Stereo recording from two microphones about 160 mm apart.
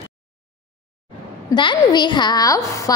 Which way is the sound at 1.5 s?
25° left (ahead or behind).